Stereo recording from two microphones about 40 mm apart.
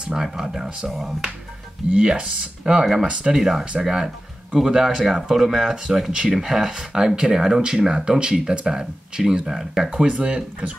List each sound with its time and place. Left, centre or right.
0.0 s speech: centre
2.0 s speech: right
3.9 s music: right
4.6 s speech: centre
9.8 s speech: right